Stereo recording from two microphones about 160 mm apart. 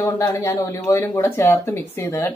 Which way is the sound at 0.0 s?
20° left (ahead or behind).